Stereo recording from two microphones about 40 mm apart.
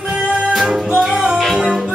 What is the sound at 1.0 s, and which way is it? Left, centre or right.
Music, centre.